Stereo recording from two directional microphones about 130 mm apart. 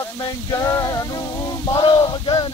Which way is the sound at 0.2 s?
30° left (ahead or behind).